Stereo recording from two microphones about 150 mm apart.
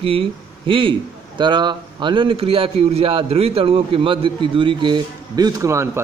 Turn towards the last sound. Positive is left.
turn(degrees=-20)  # may be behind; listen again after turning